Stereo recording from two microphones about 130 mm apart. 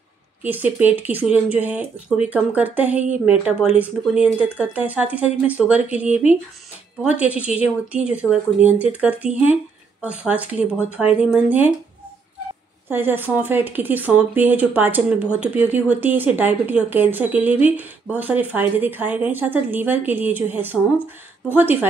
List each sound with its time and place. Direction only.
0.4 s speech: 10° right (ahead or behind)
12.8 s speech: 15° right (ahead or behind)